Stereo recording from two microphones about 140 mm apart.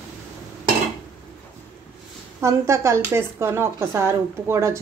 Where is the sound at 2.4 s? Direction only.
20° right (ahead or behind).